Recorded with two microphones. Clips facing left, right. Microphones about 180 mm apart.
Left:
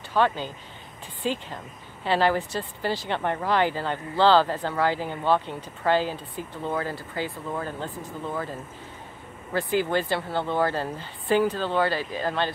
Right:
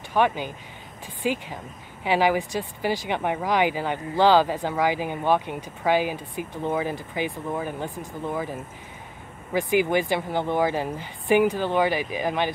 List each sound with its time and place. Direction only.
0.1 s speech: 15° right (ahead or behind)